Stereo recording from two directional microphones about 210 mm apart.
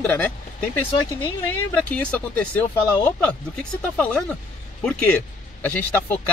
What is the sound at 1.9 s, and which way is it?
Speech, 5° left (ahead or behind).